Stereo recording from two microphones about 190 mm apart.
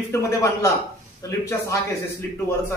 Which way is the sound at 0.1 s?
15° left (ahead or behind).